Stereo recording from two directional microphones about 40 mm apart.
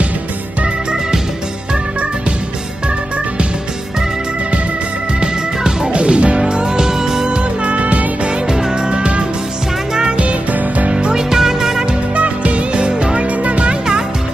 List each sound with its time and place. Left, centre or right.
5.2 s music: right
6.4 s music: centre
7.2 s music: right
8.5 s music: centre
12.2 s music: right